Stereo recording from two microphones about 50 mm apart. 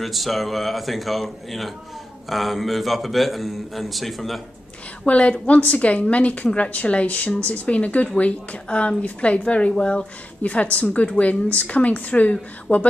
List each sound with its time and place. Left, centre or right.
0.0 s a man's voice: centre
5.0 s a woman's voice: left